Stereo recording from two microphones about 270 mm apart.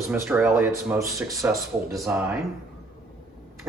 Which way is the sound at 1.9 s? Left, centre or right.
Centre.